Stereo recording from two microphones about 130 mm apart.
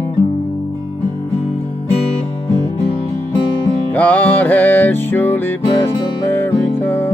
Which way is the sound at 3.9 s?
10° left (ahead or behind).